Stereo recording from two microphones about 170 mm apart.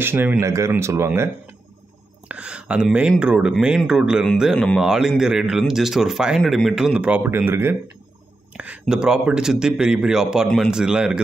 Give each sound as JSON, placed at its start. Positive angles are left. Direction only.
{"t": 0.0, "sound": "speech", "side_deg": -10}